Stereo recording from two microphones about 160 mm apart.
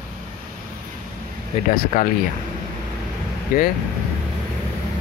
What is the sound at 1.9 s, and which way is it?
Speech, 60° left (ahead or behind).